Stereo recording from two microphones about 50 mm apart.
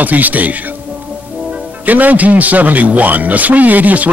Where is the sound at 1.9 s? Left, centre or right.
Right.